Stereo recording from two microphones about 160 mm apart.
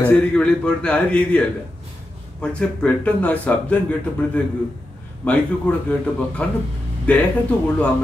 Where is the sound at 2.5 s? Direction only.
10° left (ahead or behind).